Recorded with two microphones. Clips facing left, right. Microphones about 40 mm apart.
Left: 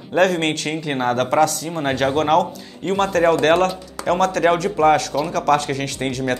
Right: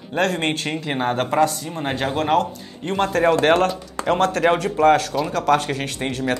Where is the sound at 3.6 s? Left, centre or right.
Centre.